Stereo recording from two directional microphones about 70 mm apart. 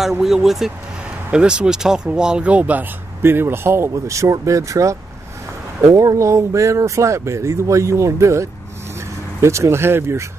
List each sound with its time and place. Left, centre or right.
0.0 s speech: centre; by 2.9 s right
3.2 s speech: right
3.9 s speech: right
5.9 s speech: right